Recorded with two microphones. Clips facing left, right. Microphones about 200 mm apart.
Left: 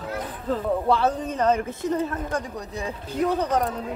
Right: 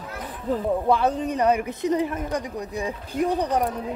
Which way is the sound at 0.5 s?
15° right (ahead or behind).